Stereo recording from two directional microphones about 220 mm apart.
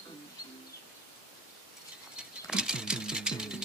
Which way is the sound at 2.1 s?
5° right (ahead or behind).